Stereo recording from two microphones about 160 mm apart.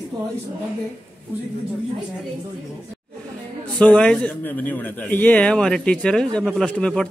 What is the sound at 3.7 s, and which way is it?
Speech, 5° left (ahead or behind).